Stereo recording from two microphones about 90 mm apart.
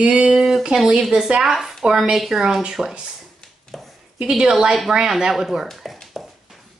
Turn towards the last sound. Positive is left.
turn(degrees=0)  # may be behind; listen again after turning